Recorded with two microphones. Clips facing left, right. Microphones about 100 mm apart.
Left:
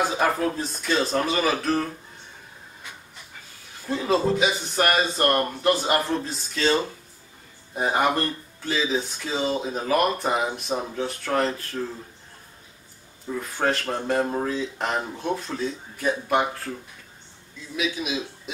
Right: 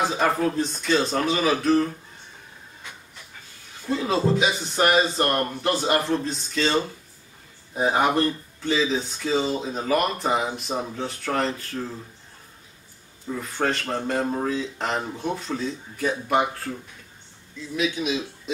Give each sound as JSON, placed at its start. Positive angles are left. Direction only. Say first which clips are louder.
{"t": 0.0, "sound": "speech", "louder": "right 1 dB", "side_deg": 5}
{"t": 3.9, "sound": "speech", "louder": "even", "side_deg": 0}
{"t": 13.4, "sound": "speech", "louder": "left 1 dB", "side_deg": 0}
{"t": 17.7, "sound": "a man's voice", "louder": "right 2 dB", "side_deg": 5}